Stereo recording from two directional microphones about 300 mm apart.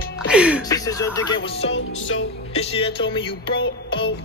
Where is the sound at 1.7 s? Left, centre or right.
Left.